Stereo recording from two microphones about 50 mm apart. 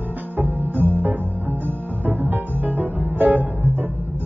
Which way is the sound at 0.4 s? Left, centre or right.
Right.